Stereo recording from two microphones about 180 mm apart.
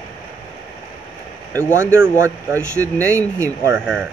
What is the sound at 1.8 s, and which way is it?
Speech, 15° right (ahead or behind).